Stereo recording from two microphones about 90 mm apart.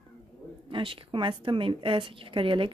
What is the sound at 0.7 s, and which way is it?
A woman's voice, 70° right (ahead or behind).